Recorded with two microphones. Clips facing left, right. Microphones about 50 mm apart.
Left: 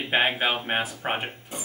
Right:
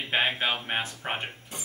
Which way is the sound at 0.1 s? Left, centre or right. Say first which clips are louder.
Left 3 dB; centre.